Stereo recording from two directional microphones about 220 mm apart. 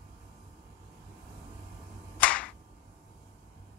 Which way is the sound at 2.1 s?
5° left (ahead or behind).